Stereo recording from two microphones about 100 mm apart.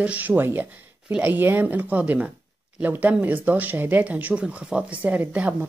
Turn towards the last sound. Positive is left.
turn(degrees=-10)  # may be behind; listen again after turning